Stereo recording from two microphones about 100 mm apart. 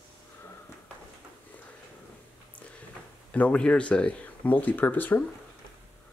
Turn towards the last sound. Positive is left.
turn(degrees=15)  # may be behind; listen again after turning